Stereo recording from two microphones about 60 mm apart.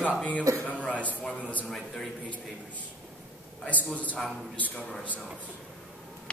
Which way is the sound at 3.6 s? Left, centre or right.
Left.